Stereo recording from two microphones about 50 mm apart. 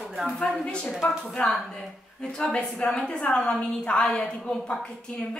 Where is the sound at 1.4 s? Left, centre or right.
Left.